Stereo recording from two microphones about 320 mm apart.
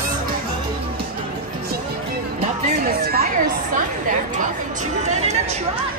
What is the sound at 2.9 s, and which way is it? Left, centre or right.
Speech, right.